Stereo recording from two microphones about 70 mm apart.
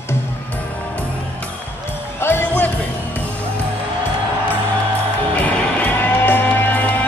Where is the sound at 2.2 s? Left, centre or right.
Left.